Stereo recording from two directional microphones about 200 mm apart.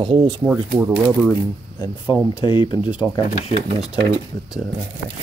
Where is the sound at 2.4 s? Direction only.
25° left (ahead or behind).